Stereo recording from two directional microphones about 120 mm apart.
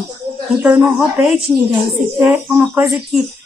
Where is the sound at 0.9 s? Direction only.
Centre (ahead or behind).